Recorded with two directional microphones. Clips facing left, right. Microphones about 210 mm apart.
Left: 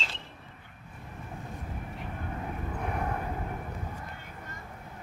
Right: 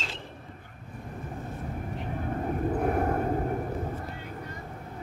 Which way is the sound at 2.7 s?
45° right (ahead or behind).